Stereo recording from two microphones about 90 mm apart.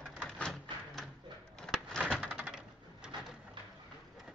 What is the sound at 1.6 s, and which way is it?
Bird, 5° left (ahead or behind).